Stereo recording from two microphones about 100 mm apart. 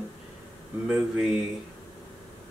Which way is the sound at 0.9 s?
5° right (ahead or behind).